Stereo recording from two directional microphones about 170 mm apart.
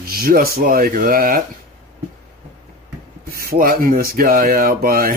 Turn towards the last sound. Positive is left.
turn(degrees=-60)  # may be behind; listen again after turning